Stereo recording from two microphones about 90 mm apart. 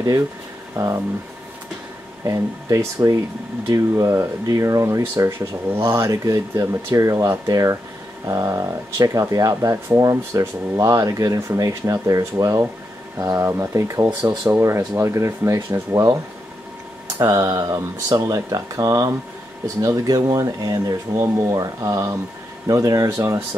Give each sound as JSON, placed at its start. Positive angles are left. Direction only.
{"t": 0.7, "sound": "speech", "side_deg": -35}
{"t": 2.2, "sound": "speech", "side_deg": -35}
{"t": 13.5, "sound": "speech", "side_deg": -30}
{"t": 14.0, "sound": "speech", "side_deg": -45}
{"t": 14.5, "sound": "speech", "side_deg": -30}
{"t": 17.5, "sound": "speech", "side_deg": -40}